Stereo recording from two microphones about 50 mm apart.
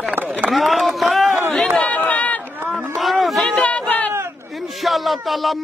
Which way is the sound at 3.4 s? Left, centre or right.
Left.